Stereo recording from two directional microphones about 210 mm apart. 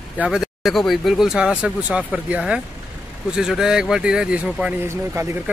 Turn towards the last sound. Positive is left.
turn(degrees=-15)  # may be behind; listen again after turning